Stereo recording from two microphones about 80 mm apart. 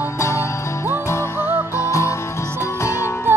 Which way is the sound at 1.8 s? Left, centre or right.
Left.